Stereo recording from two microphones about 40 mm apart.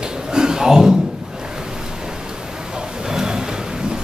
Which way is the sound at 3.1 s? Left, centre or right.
Centre.